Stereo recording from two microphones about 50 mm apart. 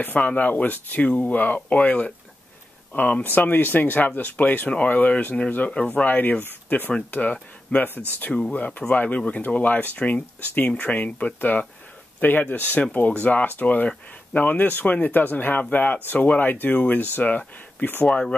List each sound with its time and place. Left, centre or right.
0.0 s speech: left
8.3 s speech: left